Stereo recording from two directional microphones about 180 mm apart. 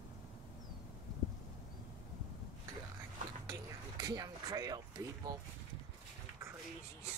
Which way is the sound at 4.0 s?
20° right (ahead or behind).